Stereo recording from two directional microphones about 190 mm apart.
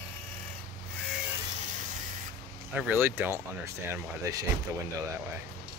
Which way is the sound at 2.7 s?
10° right (ahead or behind).